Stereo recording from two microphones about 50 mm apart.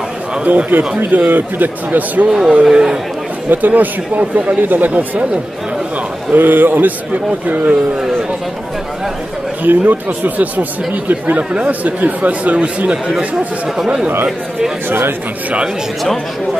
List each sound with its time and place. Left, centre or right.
0.4 s a man's voice: right
2.2 s speech: centre
3.4 s a man's voice: right
6.3 s a man's voice: right
9.6 s a man's voice: right
14.9 s speech: right